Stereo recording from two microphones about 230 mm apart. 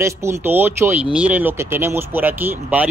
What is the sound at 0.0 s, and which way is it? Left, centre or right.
Speech, centre.